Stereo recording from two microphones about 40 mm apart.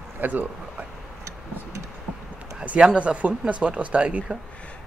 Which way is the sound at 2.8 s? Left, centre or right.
Right.